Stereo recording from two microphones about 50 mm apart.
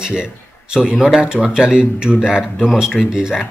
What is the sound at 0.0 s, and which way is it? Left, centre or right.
A man's voice, centre.